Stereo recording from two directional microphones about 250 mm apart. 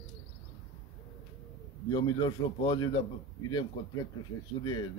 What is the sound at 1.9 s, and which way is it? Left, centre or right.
Speech, centre.